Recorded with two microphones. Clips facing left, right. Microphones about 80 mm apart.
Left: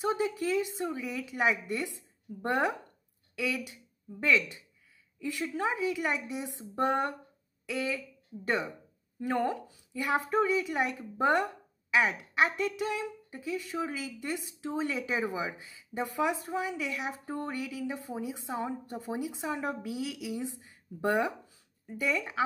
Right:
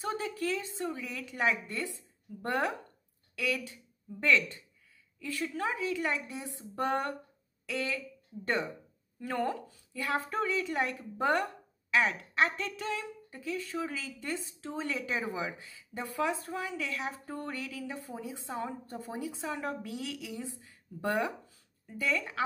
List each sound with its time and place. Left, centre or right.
0.0 s speech: centre
9.2 s speech: centre